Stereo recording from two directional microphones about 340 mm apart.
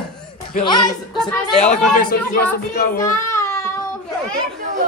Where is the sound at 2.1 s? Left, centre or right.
Left.